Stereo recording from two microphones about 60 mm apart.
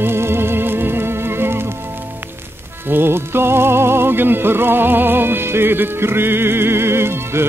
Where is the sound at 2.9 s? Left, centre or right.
Right.